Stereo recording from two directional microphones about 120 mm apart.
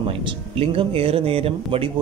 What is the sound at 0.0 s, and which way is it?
Speech, 50° right (ahead or behind).